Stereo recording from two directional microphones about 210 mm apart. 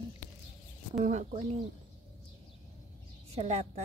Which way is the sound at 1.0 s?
35° right (ahead or behind).